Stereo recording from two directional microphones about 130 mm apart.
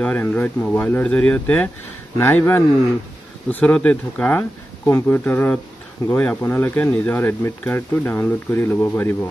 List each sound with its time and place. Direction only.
0.0 s speech: 10° left (ahead or behind)